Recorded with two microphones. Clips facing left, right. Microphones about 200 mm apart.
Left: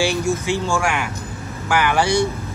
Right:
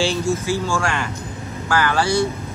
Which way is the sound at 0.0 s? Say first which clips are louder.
Even; 15° left (ahead or behind).